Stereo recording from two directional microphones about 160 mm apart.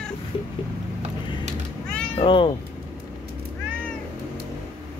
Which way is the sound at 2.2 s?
30° left (ahead or behind).